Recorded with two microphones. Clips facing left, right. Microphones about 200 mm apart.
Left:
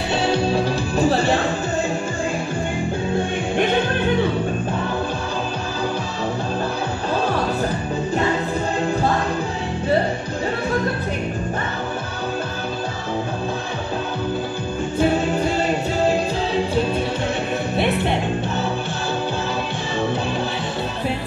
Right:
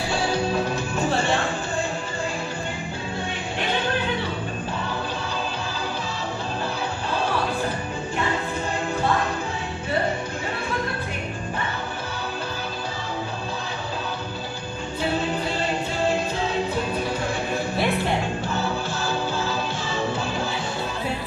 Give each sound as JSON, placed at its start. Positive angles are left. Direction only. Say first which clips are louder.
{"t": 0.1, "sound": "music", "louder": "left 5 dB", "side_deg": 30}
{"t": 17.7, "sound": "music", "louder": "left 4 dB", "side_deg": 20}